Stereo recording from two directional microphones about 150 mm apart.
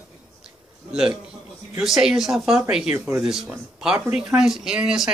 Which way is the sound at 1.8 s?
5° right (ahead or behind).